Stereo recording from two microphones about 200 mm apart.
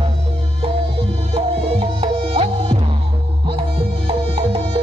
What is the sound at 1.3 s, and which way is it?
Music, 30° right (ahead or behind).